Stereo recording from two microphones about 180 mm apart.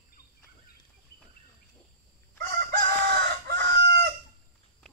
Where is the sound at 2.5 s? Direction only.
60° right (ahead or behind).